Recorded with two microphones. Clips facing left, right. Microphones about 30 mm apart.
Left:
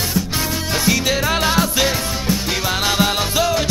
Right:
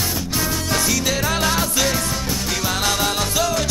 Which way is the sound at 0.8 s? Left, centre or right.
Left.